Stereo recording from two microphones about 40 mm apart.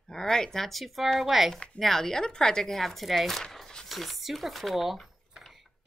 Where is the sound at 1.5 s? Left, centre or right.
Left.